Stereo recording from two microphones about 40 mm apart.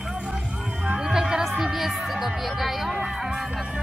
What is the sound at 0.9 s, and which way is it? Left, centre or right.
Speech, centre.